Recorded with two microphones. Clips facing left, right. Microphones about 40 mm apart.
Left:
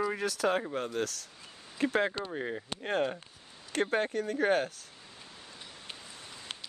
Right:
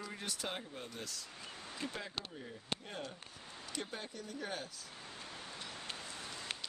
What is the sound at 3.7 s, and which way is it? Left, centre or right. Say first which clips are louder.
Speech: left 16 dB; left.